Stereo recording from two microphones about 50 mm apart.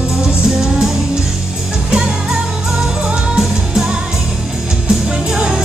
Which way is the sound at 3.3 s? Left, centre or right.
Centre.